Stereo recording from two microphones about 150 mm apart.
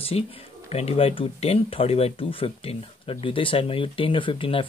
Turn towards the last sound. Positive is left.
turn(degrees=35)  # may be behind; listen again after turning